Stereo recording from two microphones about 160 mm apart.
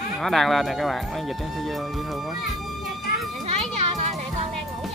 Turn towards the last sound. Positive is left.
turn(degrees=-45)  # may be behind; listen again after turning